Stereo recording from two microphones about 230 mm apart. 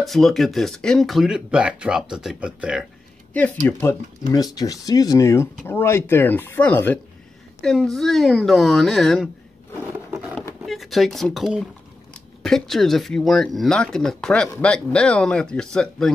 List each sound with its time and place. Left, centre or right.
0.0 s speech: centre
3.6 s speech: centre
9.8 s a sound: centre
10.6 s speech: centre